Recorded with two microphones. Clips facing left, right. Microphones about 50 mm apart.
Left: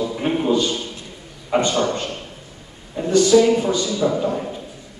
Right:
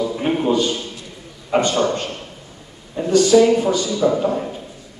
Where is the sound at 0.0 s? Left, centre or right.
Centre.